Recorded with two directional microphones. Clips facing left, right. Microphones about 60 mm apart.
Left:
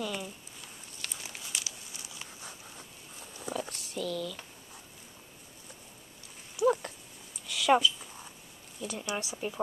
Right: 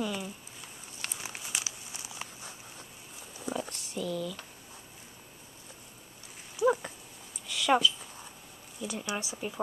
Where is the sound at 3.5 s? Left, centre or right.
Centre.